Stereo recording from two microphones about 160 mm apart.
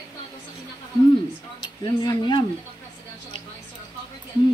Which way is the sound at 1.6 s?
30° left (ahead or behind).